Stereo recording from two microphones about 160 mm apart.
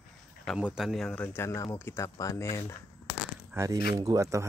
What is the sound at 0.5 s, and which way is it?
Speech, 5° right (ahead or behind).